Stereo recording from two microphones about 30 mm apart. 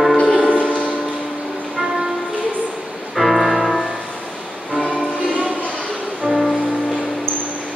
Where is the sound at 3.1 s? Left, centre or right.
Centre.